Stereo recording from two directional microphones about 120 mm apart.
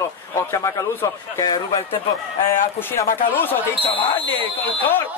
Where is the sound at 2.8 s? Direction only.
20° left (ahead or behind).